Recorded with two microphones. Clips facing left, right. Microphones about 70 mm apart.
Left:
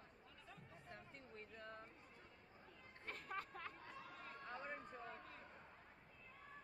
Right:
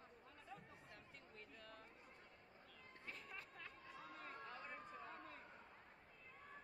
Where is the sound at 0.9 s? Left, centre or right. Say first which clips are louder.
Left 4 dB; left.